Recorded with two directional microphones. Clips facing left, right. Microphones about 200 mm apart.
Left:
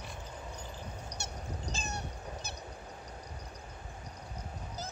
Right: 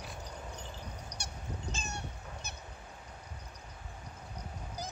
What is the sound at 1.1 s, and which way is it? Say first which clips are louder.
Honk: left 3 dB; 30° left (ahead or behind).